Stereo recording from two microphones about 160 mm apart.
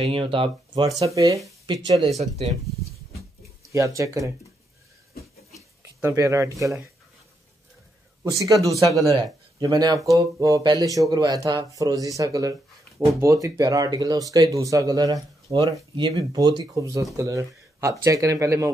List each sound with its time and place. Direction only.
0.0 s speech: 35° right (ahead or behind)
0.7 s speech: 25° right (ahead or behind)
2.1 s speech: 45° right (ahead or behind)
3.7 s speech: 20° right (ahead or behind)
5.8 s speech: 15° right (ahead or behind)
8.2 s a man's voice: 20° right (ahead or behind)